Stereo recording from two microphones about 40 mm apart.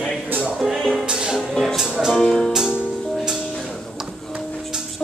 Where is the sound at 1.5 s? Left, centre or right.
Centre.